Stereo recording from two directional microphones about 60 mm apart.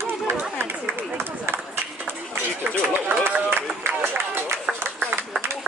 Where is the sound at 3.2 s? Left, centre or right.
Right.